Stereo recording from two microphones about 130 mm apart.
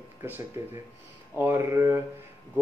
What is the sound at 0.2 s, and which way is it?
Speech, 20° right (ahead or behind).